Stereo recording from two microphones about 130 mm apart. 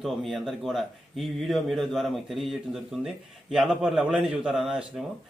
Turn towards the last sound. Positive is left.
turn(degrees=-5)  # may be behind; listen again after turning